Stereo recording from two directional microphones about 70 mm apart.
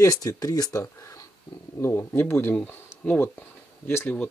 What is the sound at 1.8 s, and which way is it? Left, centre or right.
Speech, left.